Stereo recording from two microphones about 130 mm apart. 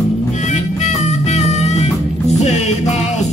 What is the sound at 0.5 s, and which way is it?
Music, 65° left (ahead or behind).